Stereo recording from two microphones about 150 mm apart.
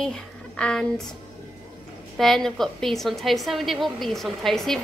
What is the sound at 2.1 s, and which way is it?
A woman's voice, centre (ahead or behind).